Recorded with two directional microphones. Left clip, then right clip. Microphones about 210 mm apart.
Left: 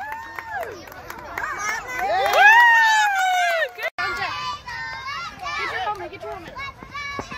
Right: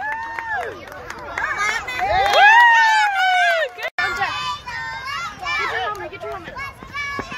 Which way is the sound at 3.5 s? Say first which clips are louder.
Right 2 dB; centre (ahead or behind).